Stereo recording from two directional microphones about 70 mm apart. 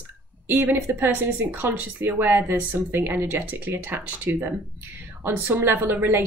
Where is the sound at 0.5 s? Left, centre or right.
Right.